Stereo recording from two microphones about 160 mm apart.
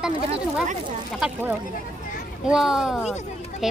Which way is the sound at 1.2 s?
5° right (ahead or behind).